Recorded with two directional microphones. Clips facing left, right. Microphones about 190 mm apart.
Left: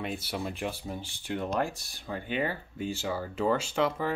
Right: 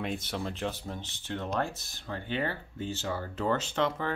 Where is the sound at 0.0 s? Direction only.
5° left (ahead or behind).